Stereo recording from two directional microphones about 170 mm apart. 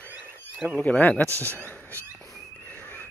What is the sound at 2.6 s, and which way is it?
Whistle, 10° left (ahead or behind).